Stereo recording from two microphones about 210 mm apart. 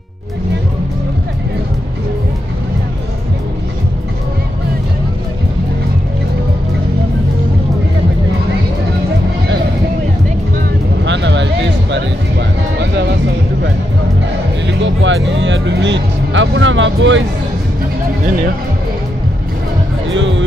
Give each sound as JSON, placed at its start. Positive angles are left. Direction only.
{"t": 11.1, "sound": "music", "side_deg": -60}
{"t": 14.7, "sound": "music", "side_deg": -60}
{"t": 20.1, "sound": "music", "side_deg": -60}